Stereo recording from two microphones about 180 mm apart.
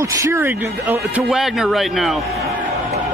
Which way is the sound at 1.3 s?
Centre (ahead or behind).